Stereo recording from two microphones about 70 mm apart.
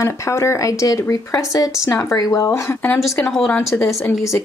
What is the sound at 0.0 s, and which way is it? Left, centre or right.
Speech, left.